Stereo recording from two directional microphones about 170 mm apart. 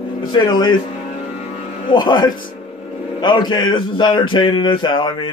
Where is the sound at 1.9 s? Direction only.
30° left (ahead or behind).